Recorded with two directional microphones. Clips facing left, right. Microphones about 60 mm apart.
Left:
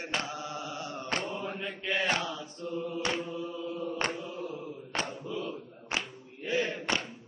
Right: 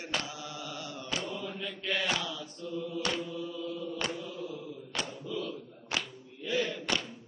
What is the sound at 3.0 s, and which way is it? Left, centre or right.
Chant, left.